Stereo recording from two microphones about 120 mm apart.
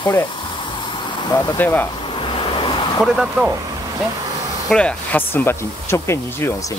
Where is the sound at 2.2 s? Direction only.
45° left (ahead or behind).